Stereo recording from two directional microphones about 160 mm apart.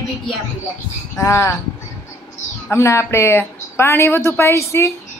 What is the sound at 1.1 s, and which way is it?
Speech, 20° left (ahead or behind).